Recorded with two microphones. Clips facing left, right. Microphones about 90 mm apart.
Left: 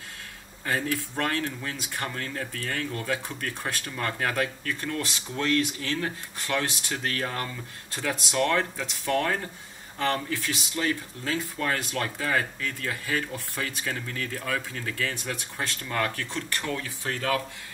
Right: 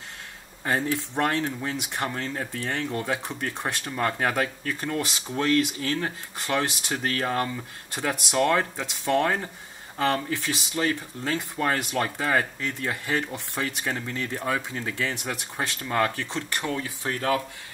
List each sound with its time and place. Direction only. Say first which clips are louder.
0.7 s speech: right 2 dB; 20° right (ahead or behind)